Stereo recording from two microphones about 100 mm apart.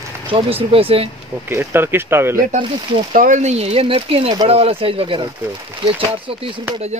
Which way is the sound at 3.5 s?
85° right.